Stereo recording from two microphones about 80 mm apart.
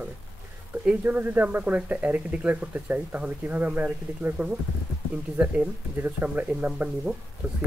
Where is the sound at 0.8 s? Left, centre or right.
Centre.